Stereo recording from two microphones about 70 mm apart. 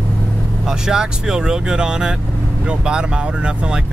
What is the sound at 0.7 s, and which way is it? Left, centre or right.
Speech, centre.